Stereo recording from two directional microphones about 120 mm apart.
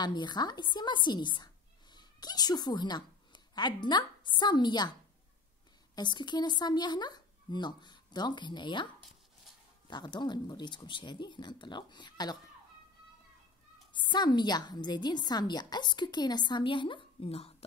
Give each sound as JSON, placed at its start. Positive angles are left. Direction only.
{"t": 0.0, "sound": "a woman's voice", "side_deg": 35}
{"t": 5.9, "sound": "a woman's voice", "side_deg": 40}
{"t": 9.8, "sound": "a woman's voice", "side_deg": 40}
{"t": 13.9, "sound": "a woman's voice", "side_deg": 40}